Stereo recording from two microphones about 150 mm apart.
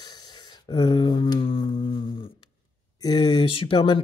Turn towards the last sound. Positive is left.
turn(degrees=35)  # may be behind; listen again after turning